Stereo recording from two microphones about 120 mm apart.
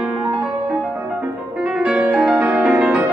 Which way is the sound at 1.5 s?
5° right (ahead or behind).